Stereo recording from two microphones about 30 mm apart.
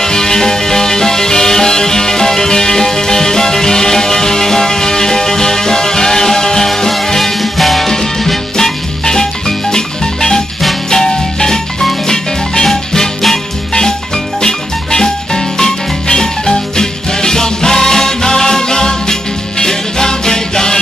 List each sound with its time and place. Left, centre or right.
0.0 s music: centre
7.3 s music: centre